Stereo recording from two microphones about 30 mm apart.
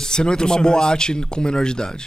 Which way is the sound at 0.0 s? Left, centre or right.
Left.